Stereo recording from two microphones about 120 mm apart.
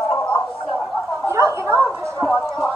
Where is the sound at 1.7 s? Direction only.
10° left (ahead or behind).